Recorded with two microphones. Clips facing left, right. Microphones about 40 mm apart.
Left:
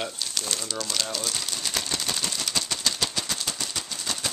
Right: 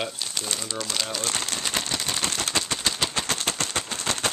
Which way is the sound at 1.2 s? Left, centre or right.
Right.